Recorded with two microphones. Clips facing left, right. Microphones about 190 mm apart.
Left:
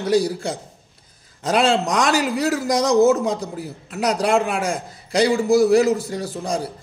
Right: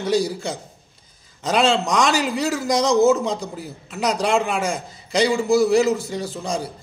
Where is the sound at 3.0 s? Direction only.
15° left (ahead or behind).